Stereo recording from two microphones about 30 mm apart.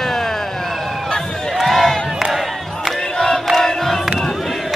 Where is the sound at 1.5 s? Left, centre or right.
Centre.